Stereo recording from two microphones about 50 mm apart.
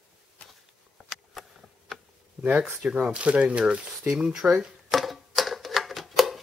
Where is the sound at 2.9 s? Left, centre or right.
Right.